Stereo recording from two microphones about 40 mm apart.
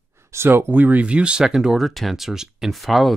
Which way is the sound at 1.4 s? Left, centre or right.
Centre.